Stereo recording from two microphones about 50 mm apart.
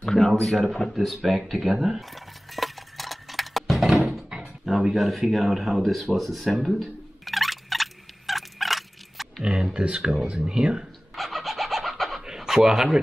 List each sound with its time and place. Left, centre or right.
0.0 s a sound: centre
0.4 s camera: centre
4.0 s door: centre
4.6 s a sound: centre
9.4 s speech: centre
11.1 s bird: centre
12.3 s speech: centre